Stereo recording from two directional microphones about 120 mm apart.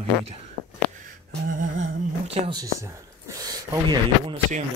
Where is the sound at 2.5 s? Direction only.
30° right (ahead or behind).